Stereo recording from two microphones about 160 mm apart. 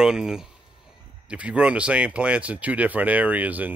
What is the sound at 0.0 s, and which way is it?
Speech, 5° right (ahead or behind).